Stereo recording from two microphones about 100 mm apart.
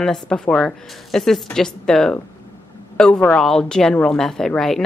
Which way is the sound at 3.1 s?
15° left (ahead or behind).